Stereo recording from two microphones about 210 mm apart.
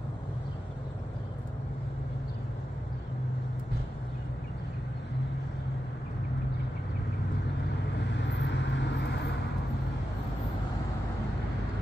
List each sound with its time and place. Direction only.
8.3 s vehicle: 55° left (ahead or behind)